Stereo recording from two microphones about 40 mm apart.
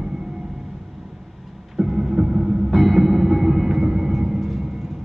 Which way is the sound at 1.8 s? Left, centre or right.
Centre.